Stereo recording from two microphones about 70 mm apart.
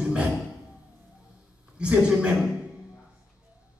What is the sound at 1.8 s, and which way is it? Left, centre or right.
Speech, centre.